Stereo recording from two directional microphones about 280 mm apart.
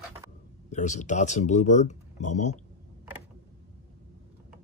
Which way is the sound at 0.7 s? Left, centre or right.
Left.